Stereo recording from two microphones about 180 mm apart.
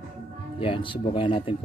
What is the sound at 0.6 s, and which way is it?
Speech, 30° left (ahead or behind).